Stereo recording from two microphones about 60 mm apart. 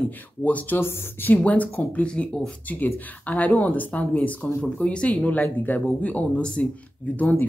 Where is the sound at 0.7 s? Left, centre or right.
Left.